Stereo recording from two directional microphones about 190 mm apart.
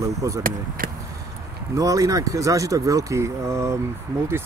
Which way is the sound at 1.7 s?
20° right (ahead or behind).